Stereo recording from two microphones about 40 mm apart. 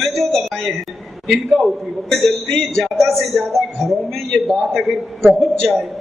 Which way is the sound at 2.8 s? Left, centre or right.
Centre.